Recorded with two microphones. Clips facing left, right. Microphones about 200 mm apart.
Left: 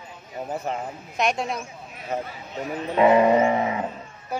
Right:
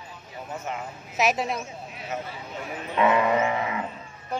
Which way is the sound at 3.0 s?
30° left (ahead or behind).